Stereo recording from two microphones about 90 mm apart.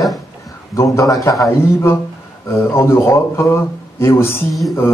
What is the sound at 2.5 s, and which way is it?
Speech, 30° left (ahead or behind).